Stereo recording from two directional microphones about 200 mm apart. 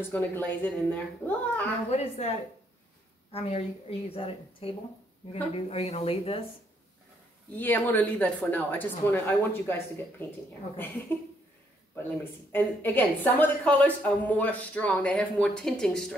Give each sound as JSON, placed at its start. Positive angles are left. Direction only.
{"t": 0.0, "sound": "a woman's voice", "side_deg": 10}
{"t": 1.9, "sound": "a woman's voice", "side_deg": 35}
{"t": 7.5, "sound": "a woman's voice", "side_deg": 10}
{"t": 12.0, "sound": "a woman's voice", "side_deg": 10}